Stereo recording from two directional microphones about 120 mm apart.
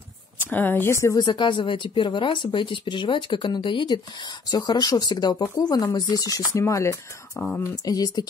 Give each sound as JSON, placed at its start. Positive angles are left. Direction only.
{"t": 0.4, "sound": "speech", "side_deg": 15}